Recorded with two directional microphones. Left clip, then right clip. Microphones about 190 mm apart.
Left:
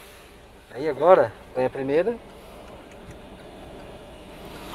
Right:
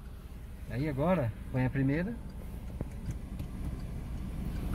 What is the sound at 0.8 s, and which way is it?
Speech, 20° left (ahead or behind).